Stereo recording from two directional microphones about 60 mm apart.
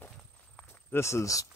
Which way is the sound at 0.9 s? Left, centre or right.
Left.